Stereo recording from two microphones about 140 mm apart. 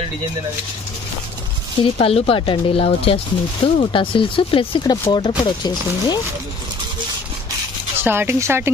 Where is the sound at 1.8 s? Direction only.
45° left (ahead or behind).